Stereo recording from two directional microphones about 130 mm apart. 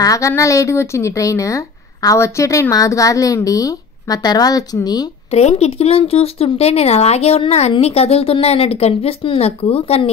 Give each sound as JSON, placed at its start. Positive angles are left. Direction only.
{"t": 0.0, "sound": "a woman's voice", "side_deg": 25}
{"t": 5.3, "sound": "speech", "side_deg": 55}